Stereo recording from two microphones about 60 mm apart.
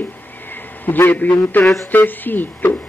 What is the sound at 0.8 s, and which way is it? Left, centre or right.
A man's voice, left.